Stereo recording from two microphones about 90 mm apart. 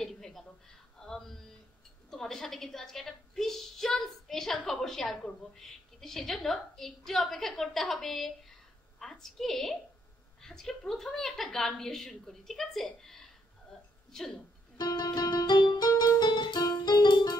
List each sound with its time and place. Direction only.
0.0 s a sound: 5° left (ahead or behind)
2.0 s a woman's voice: 5° left (ahead or behind)
14.8 s music: 50° left (ahead or behind)